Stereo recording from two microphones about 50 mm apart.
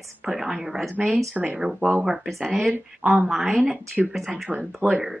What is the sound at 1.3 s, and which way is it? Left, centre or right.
Speech, right.